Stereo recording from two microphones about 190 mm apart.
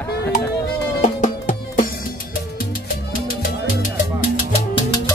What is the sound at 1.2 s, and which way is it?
Music, 45° left (ahead or behind).